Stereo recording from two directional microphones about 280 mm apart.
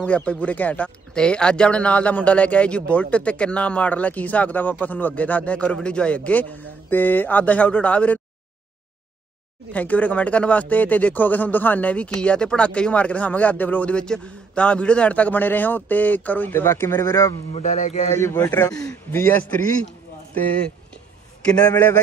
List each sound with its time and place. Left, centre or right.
0.0 s speech: centre
9.7 s speech: centre
17.5 s speech: left
18.1 s a man's voice: centre
21.5 s a man's voice: centre